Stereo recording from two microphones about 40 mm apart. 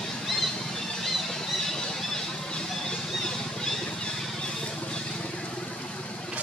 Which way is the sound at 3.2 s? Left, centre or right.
Centre.